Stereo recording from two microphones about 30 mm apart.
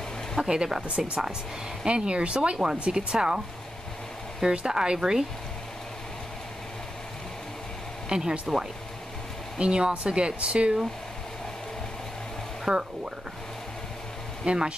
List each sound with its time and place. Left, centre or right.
0.4 s speech: right
2.5 s speech: right
8.1 s speech: right
12.6 s speech: right
14.4 s speech: right